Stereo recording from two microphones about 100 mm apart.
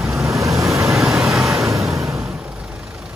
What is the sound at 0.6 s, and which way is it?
Vehicle, 5° right (ahead or behind).